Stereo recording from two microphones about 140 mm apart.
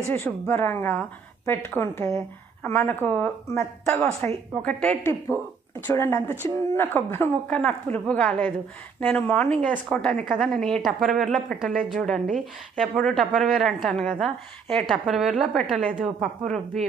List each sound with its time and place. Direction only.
0.1 s a woman's voice: 15° left (ahead or behind)